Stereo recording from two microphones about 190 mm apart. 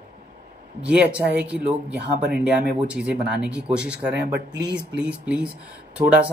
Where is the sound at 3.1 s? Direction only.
65° right (ahead or behind).